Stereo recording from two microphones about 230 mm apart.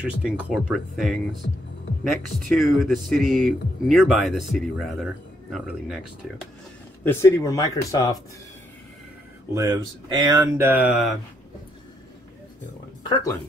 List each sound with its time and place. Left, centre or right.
0.0 s speech: centre
2.5 s speech: centre
7.1 s speech: centre
9.5 s speech: centre